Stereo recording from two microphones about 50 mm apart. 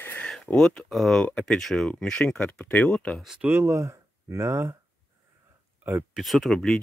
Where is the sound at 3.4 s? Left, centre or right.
Right.